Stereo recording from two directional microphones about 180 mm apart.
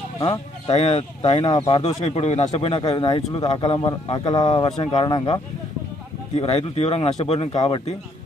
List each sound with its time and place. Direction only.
0.2 s speech: 30° left (ahead or behind)
2.0 s speech: 35° left (ahead or behind)